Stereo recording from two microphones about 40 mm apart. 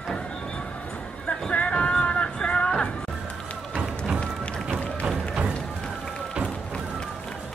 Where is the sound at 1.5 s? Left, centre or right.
Left.